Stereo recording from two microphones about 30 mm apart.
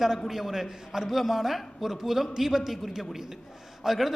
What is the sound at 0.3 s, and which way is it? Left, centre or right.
A man's voice, centre.